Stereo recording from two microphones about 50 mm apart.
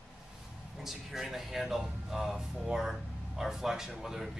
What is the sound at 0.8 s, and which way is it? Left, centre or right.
Speech, centre.